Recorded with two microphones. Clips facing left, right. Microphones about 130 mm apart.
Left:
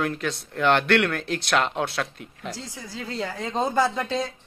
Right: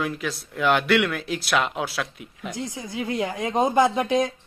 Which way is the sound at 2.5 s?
20° right (ahead or behind).